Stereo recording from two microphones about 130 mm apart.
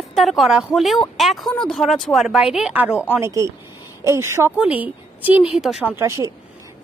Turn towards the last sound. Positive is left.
turn(degrees=-20)  # may be behind; listen again after turning